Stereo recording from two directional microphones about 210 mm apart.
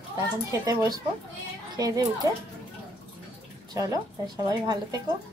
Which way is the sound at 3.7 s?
15° right (ahead or behind).